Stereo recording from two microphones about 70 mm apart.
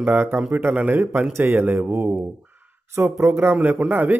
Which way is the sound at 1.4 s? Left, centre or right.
Right.